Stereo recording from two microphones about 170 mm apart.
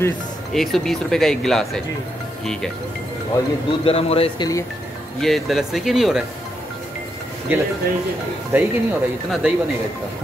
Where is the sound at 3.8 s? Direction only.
35° left (ahead or behind).